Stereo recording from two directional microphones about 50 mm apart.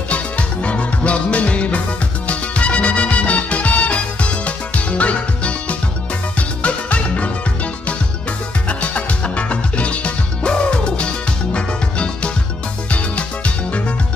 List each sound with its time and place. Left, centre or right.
0.1 s music: left
8.6 s music: left